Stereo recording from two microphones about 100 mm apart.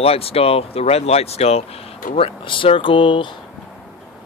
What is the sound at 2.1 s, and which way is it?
Speech, 60° left (ahead or behind).